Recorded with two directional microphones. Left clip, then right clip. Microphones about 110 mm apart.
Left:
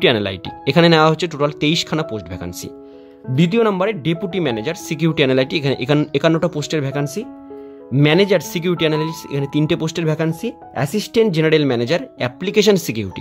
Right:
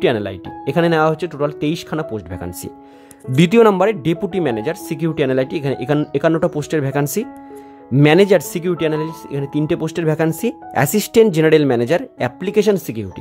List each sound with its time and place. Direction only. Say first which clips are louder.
0.2 s speech: left 2 dB; centre (ahead or behind)
2.1 s speech: right 1 dB; 20° right (ahead or behind)
3.3 s speech: right 5 dB; 45° right (ahead or behind); by 5.0 s 20° right (ahead or behind)
5.0 s speech: left 2 dB; 5° right (ahead or behind); by 8.5 s 30° right (ahead or behind)
8.5 s speech: left 1 dB; 10° right (ahead or behind)
9.8 s speech: right 2 dB; 25° right (ahead or behind)
10.4 s speech: right 5 dB; 35° right (ahead or behind); by 13.1 s 5° right (ahead or behind)